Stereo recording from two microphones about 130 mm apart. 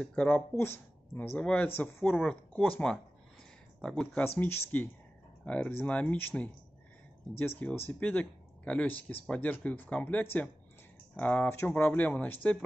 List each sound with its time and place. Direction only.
0.0 s speech: 10° left (ahead or behind)
3.8 s speech: 5° left (ahead or behind)
4.4 s speech: 15° left (ahead or behind)